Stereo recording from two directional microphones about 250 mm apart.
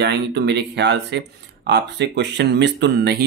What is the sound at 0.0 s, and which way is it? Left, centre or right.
Speech, right.